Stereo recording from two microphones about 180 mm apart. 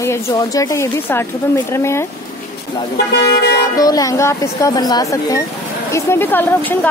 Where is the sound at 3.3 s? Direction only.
70° left (ahead or behind).